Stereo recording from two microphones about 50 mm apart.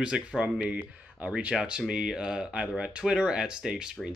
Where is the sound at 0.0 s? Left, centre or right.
Centre.